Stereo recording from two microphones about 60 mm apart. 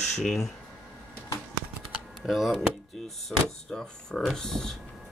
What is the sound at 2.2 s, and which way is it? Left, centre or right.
Speech, centre.